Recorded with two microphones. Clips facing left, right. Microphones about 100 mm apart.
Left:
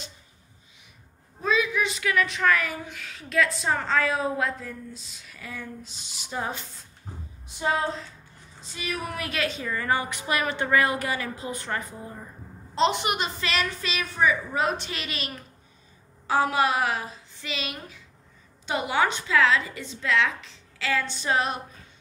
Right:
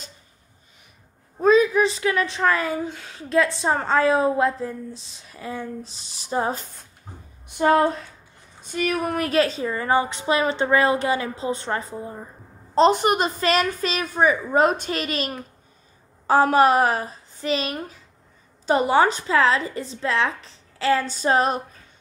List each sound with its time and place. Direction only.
1.4 s a woman's voice: 40° right (ahead or behind)
7.4 s a woman's voice: 60° right (ahead or behind); by 12.3 s 30° right (ahead or behind)
12.7 s a woman's voice: 40° right (ahead or behind)